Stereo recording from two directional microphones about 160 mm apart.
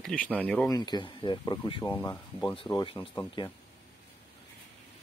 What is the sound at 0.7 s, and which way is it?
Speech, 25° left (ahead or behind).